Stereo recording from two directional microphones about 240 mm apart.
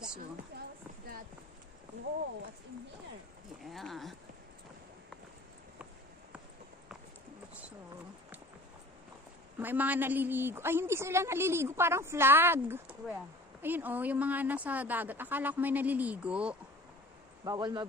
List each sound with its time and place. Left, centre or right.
3.6 s speech: centre
9.6 s a woman's voice: centre
17.5 s a woman's voice: centre